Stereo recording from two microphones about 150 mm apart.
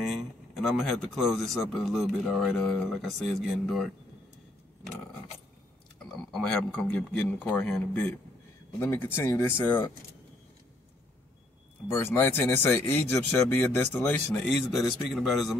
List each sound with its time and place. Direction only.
0.0 s a man's voice: centre (ahead or behind)
6.0 s speech: 5° left (ahead or behind)
11.9 s a man's voice: 15° left (ahead or behind); by 15.5 s centre (ahead or behind)